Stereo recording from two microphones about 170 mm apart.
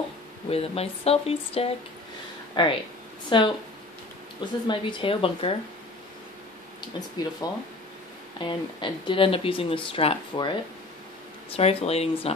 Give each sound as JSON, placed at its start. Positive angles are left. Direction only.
{"t": 0.5, "sound": "speech", "side_deg": 35}
{"t": 4.6, "sound": "speech", "side_deg": 30}
{"t": 7.4, "sound": "speech", "side_deg": 20}